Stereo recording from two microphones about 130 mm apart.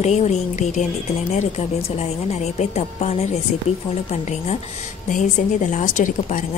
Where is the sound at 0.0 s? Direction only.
60° left (ahead or behind).